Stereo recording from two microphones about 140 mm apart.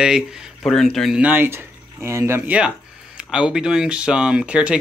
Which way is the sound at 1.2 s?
15° right (ahead or behind).